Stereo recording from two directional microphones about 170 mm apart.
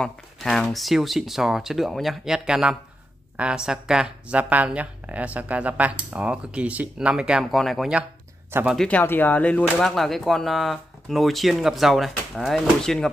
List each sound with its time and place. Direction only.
0.0 s speech: centre (ahead or behind)
8.5 s speech: 15° right (ahead or behind)
8.7 s speech: 5° left (ahead or behind)